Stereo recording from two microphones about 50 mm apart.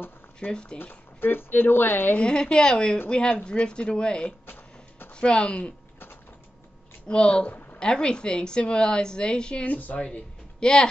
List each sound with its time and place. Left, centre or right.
0.4 s a woman's voice: left
0.7 s speech: left
2.1 s a woman's voice: centre
3.1 s a woman's voice: left
3.6 s a woman's voice: centre
4.5 s a sound: left
5.1 s speech: left
7.1 s a woman's voice: centre
9.7 s speech: left
10.0 s speech: centre